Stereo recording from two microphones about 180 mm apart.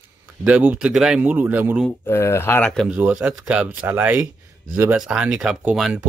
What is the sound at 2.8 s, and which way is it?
Speech, 5° right (ahead or behind).